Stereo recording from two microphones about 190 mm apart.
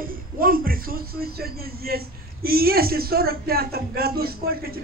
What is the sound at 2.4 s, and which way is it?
A woman's voice, 50° right (ahead or behind).